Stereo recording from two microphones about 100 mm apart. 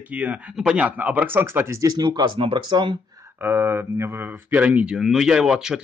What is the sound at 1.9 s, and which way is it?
Speech, 50° right (ahead or behind).